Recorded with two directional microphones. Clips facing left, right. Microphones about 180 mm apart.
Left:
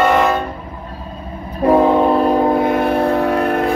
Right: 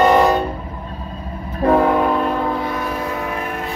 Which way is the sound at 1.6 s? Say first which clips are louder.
Left 3 dB; 20° left (ahead or behind).